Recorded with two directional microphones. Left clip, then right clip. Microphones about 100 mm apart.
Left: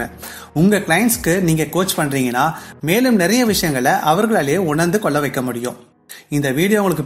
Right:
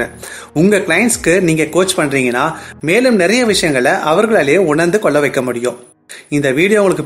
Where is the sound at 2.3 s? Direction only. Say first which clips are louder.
Right 2 dB; 30° left (ahead or behind).